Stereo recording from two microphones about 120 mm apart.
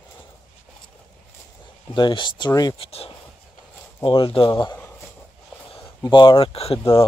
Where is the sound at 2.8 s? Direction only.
55° left (ahead or behind).